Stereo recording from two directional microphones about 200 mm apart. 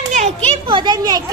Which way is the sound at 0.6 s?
20° right (ahead or behind).